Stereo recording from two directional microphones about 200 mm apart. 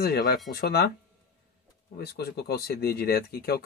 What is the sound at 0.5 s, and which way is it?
Speech, 50° left (ahead or behind).